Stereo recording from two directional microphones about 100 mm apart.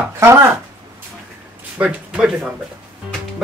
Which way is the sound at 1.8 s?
10° right (ahead or behind).